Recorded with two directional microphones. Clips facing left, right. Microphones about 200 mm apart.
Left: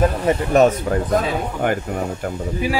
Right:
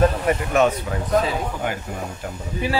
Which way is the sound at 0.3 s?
35° left (ahead or behind).